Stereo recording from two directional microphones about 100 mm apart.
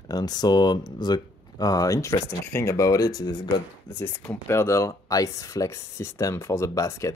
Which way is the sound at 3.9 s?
20° left (ahead or behind).